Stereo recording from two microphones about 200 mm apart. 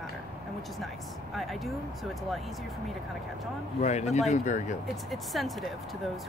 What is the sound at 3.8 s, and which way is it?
Speech, 35° left (ahead or behind).